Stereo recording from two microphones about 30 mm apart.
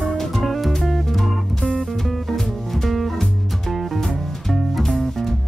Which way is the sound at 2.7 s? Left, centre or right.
Centre.